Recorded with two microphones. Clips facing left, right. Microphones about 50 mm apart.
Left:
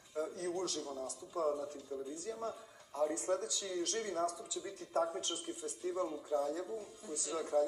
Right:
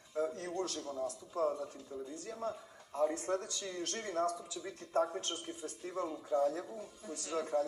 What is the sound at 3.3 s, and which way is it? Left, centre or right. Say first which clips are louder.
A man's voice: left 1 dB; centre.